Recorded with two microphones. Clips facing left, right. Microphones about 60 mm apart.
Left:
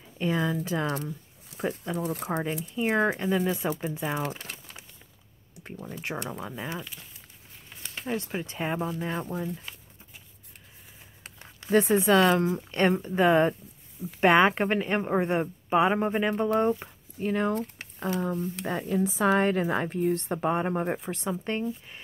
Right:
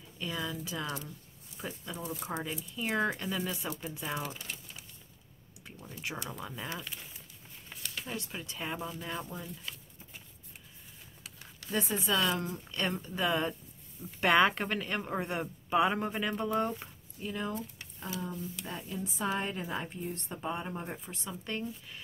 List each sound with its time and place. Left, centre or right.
0.2 s speech: left
2.8 s speech: left
4.2 s speech: left
6.3 s speech: centre
6.8 s speech: centre
7.8 s speech: left
11.7 s speech: left
12.9 s speech: left
14.2 s speech: left
17.2 s speech: left
21.3 s speech: left